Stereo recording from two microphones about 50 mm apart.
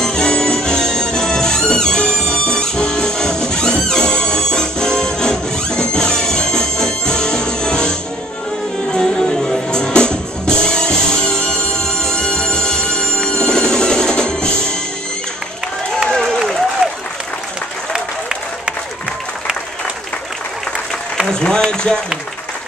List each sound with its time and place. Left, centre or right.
0.0 s music: centre
8.9 s music: centre
16.1 s applause: centre
21.3 s a sound: centre
21.6 s run: centre